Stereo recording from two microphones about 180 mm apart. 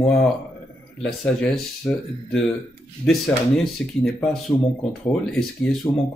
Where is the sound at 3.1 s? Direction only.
Centre (ahead or behind).